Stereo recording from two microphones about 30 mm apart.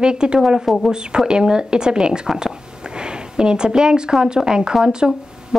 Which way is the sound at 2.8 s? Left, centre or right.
Right.